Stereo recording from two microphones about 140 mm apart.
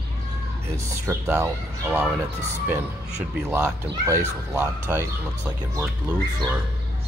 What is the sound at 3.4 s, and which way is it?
Speech, 10° right (ahead or behind).